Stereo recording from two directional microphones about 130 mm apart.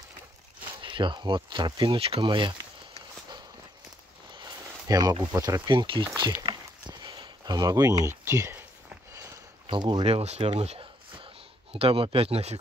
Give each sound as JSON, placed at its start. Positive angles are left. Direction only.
{"t": 0.8, "sound": "speech", "side_deg": -40}
{"t": 4.4, "sound": "speech", "side_deg": -30}
{"t": 6.4, "sound": "a sound", "side_deg": -35}
{"t": 9.7, "sound": "speech", "side_deg": -35}
{"t": 10.0, "sound": "speech", "side_deg": -55}
{"t": 10.5, "sound": "a sound", "side_deg": -45}
{"t": 11.7, "sound": "speech", "side_deg": -45}